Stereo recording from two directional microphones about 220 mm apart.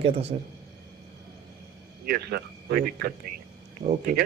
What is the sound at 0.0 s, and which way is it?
Speech, 30° right (ahead or behind).